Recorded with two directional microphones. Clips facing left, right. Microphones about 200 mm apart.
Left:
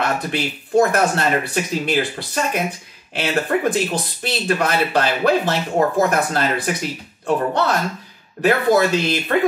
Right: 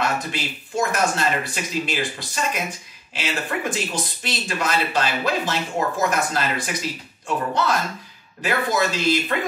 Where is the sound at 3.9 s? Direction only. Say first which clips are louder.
Left 4 dB; 60° left (ahead or behind).